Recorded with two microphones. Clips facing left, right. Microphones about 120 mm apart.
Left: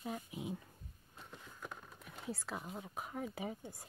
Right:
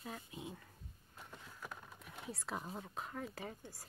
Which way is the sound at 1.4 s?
Centre (ahead or behind).